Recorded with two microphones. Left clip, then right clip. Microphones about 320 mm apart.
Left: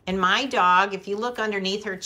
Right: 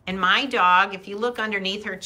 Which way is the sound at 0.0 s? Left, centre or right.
Centre.